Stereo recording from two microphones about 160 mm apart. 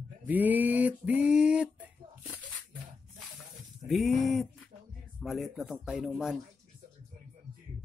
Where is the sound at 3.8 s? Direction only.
Centre (ahead or behind).